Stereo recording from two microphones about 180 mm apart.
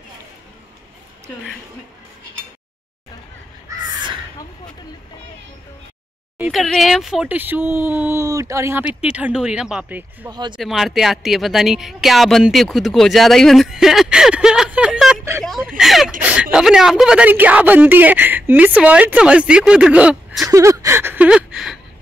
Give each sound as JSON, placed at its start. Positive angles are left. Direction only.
{"t": 3.7, "sound": "crow", "side_deg": -15}
{"t": 6.3, "sound": "speech", "side_deg": -5}
{"t": 10.3, "sound": "speech", "side_deg": -25}
{"t": 10.6, "sound": "speech", "side_deg": 0}
{"t": 15.4, "sound": "a sound", "side_deg": 0}
{"t": 16.2, "sound": "speech", "side_deg": -5}
{"t": 20.4, "sound": "speech", "side_deg": -20}